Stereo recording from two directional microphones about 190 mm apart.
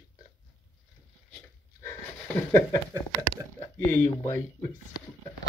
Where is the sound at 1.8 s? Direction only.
15° left (ahead or behind).